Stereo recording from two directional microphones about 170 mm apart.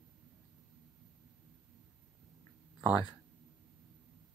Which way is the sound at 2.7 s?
10° right (ahead or behind).